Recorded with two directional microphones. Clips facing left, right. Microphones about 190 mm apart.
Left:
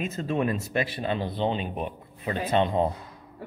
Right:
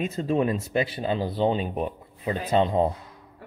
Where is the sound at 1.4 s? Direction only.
40° right (ahead or behind).